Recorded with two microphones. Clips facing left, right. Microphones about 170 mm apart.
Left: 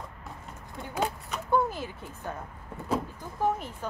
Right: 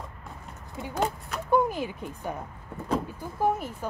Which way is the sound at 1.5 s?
15° right (ahead or behind).